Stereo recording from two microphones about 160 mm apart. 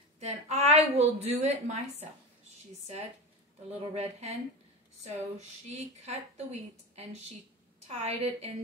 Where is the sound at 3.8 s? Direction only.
40° right (ahead or behind).